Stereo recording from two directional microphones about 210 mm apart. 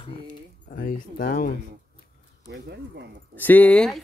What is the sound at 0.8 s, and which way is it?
Speech, 45° left (ahead or behind).